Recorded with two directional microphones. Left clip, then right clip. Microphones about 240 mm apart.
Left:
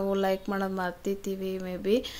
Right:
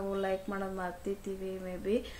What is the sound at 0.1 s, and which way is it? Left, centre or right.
A woman's voice, left.